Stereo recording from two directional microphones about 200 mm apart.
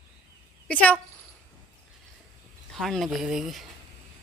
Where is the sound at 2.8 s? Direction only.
Centre (ahead or behind).